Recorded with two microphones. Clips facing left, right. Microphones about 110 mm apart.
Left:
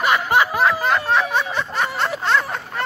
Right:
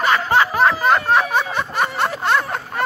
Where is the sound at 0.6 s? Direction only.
Centre (ahead or behind).